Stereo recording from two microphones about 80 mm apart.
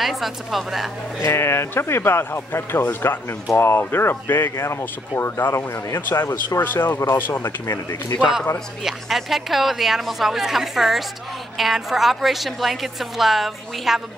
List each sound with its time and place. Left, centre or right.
0.0 s a woman's voice: centre
1.2 s speech: left
7.6 s speech: left
8.8 s a woman's voice: centre